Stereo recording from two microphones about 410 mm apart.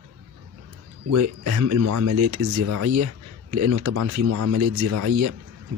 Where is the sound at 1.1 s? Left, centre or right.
Right.